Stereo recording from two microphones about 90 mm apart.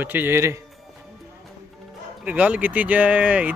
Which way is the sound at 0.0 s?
25° right (ahead or behind).